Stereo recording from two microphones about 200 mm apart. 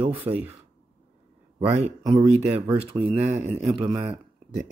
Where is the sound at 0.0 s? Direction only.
25° right (ahead or behind).